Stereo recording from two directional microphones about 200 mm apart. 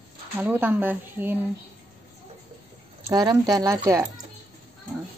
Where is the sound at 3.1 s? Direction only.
20° right (ahead or behind).